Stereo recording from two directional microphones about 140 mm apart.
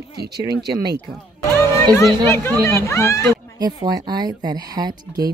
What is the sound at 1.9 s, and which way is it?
Speech, 20° left (ahead or behind).